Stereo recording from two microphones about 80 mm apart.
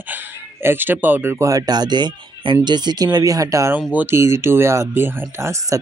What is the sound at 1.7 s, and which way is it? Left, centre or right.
Speech, right.